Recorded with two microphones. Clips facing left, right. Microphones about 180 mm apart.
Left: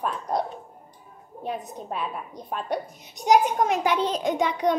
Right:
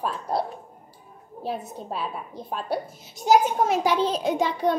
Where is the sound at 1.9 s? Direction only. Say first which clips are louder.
Even; centre (ahead or behind).